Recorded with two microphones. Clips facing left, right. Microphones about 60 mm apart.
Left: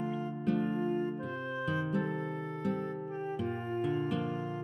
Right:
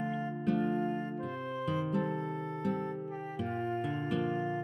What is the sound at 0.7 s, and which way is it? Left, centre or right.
Music, right.